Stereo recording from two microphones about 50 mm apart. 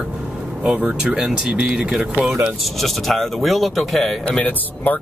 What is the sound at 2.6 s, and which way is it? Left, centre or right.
Speech, centre.